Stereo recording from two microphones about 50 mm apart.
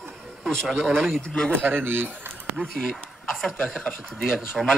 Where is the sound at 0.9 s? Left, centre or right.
Centre.